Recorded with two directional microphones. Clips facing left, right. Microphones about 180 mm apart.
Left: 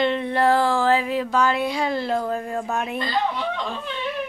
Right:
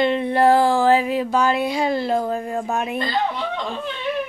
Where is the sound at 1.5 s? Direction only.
10° right (ahead or behind).